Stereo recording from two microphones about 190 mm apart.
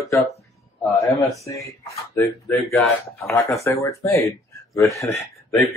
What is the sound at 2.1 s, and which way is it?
Speech, 15° left (ahead or behind).